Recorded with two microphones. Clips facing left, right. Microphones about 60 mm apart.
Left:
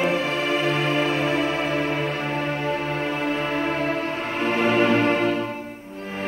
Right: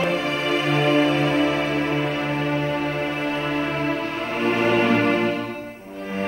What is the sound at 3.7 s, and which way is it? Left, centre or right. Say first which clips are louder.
Music: even; left.